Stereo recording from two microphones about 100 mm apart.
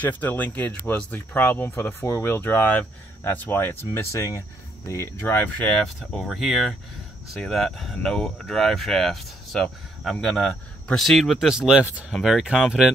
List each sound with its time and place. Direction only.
0.0 s speech: 15° left (ahead or behind)
5.9 s speech: centre (ahead or behind)